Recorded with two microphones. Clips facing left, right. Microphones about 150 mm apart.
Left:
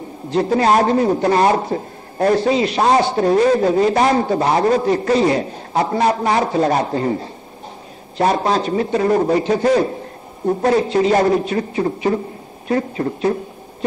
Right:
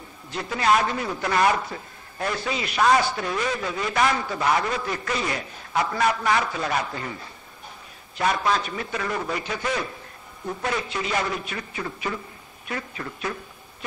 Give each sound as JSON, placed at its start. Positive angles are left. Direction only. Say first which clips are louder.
{"t": 0.3, "sound": "a man's voice", "louder": "left 8 dB", "side_deg": 35}